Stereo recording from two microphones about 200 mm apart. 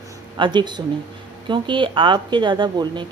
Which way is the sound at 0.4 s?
25° right (ahead or behind).